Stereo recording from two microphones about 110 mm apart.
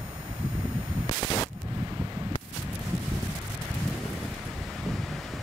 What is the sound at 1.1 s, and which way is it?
Gunshot, 40° left (ahead or behind).